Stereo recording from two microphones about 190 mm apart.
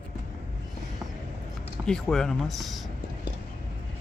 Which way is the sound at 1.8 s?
5° left (ahead or behind).